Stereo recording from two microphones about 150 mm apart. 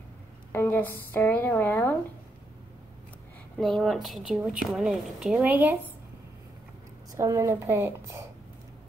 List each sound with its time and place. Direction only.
0.5 s speech: 15° left (ahead or behind)
3.5 s a woman's voice: centre (ahead or behind)
7.2 s a woman's voice: 20° right (ahead or behind)